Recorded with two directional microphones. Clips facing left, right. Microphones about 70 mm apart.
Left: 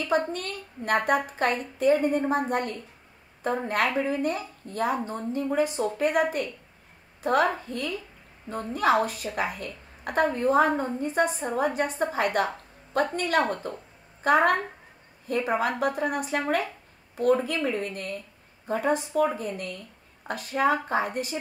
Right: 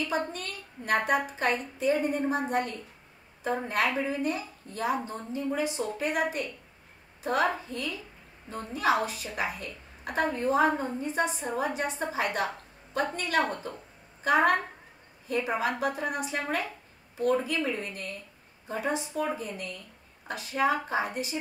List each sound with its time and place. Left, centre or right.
0.1 s a woman's voice: left
3.4 s a woman's voice: left